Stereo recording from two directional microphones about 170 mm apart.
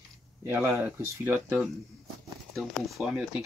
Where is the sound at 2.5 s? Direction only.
Centre (ahead or behind).